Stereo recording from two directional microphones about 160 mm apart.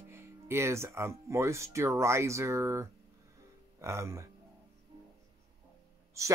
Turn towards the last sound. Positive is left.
turn(degrees=-20)  # may be behind; listen again after turning